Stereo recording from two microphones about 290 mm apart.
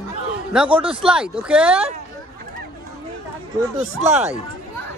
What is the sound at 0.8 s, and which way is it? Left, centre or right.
Speech, centre.